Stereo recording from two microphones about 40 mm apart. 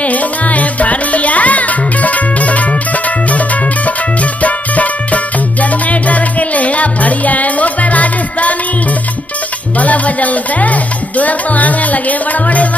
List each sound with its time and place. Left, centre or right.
0.0 s music: left
9.8 s music: left